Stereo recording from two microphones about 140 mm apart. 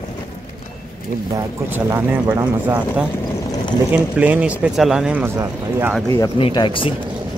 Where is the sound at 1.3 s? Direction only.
20° right (ahead or behind).